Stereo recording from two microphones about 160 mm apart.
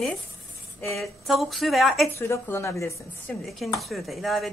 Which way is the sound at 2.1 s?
15° left (ahead or behind).